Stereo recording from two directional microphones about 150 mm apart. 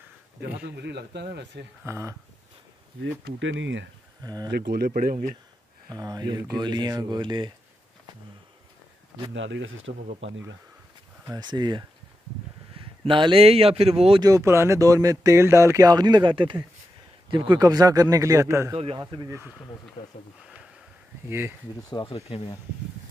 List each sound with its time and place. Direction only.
0.7 s speech: 90° right
1.9 s speech: 20° right (ahead or behind)
4.2 s speech: 25° right (ahead or behind)
4.5 s speech: 90° right; by 5.4 s 65° right (ahead or behind)
5.9 s speech: 25° right (ahead or behind)
9.9 s speech: 90° right
11.3 s speech: 30° right (ahead or behind)
14.2 s speech: 20° right (ahead or behind)
20.0 s speech: 35° left (ahead or behind)
21.3 s speech: 15° right (ahead or behind)
21.9 s speech: 40° left (ahead or behind)